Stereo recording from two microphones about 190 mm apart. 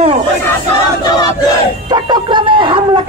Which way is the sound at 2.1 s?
25° right (ahead or behind).